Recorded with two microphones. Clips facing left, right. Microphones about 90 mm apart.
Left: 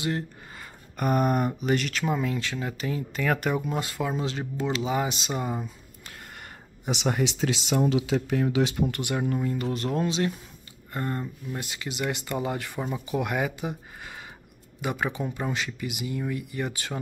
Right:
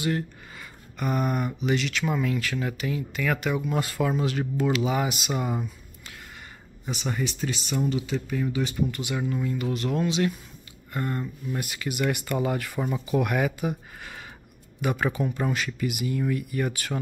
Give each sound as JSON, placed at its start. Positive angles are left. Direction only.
{"t": 0.0, "sound": "a sound", "side_deg": 30}
{"t": 0.9, "sound": "speech", "side_deg": 45}
{"t": 2.0, "sound": "speech", "side_deg": 30}
{"t": 2.8, "sound": "speech", "side_deg": 35}
{"t": 3.7, "sound": "speech", "side_deg": 20}
{"t": 6.9, "sound": "speech", "side_deg": 75}
{"t": 9.1, "sound": "speech", "side_deg": 40}